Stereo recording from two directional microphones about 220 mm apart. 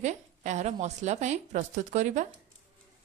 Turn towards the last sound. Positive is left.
turn(degrees=-35)  # may be behind; listen again after turning